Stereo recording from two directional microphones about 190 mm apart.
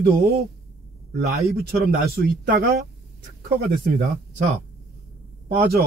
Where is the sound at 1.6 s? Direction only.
50° right (ahead or behind).